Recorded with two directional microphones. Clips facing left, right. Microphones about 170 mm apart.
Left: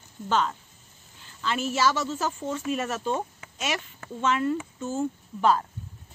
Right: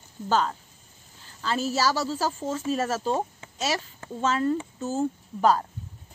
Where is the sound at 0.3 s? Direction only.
35° right (ahead or behind).